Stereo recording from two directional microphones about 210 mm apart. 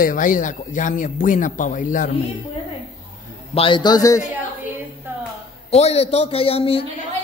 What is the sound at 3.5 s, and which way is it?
Speech, 25° left (ahead or behind).